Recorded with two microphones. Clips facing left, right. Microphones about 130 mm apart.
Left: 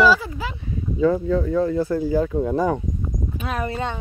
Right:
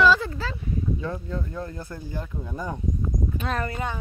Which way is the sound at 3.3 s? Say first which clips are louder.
Left 4 dB; 5° left (ahead or behind).